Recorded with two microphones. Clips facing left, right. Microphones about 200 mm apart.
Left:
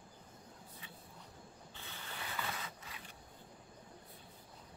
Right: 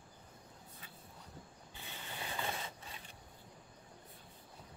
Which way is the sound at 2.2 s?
25° right (ahead or behind).